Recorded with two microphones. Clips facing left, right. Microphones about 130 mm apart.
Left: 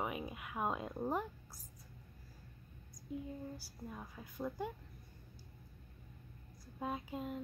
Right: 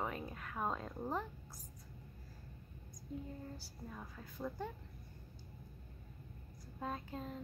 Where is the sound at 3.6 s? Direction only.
10° left (ahead or behind).